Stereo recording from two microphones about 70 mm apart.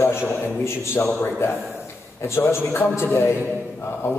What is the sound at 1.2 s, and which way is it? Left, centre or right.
A man's voice, left.